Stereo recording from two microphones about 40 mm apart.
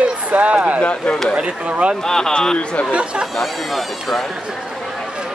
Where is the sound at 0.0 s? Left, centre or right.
Right.